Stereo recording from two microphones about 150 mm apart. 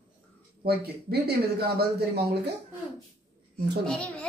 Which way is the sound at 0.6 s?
90° right.